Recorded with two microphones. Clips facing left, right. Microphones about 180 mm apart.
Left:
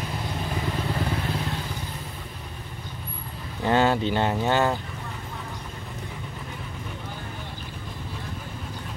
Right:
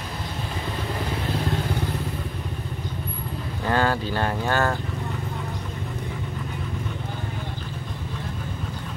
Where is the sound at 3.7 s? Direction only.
20° left (ahead or behind).